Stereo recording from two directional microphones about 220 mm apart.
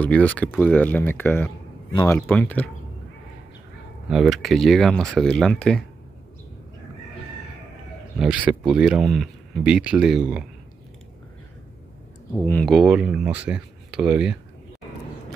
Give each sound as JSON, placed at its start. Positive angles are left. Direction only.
{"t": 0.0, "sound": "speech", "side_deg": 5}
{"t": 2.1, "sound": "speech", "side_deg": 5}
{"t": 4.1, "sound": "speech", "side_deg": 0}
{"t": 8.2, "sound": "speech", "side_deg": -5}
{"t": 12.4, "sound": "speech", "side_deg": 5}